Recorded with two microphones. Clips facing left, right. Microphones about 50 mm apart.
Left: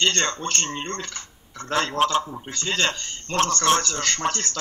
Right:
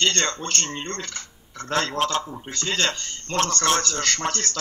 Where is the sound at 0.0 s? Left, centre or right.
Centre.